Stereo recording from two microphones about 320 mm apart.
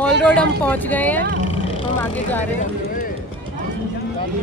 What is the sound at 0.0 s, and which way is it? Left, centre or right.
Speech, centre.